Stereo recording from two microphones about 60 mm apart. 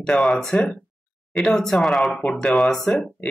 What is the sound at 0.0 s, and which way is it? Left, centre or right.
Speech, centre.